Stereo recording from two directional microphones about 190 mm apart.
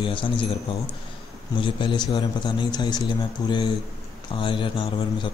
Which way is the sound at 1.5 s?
25° left (ahead or behind).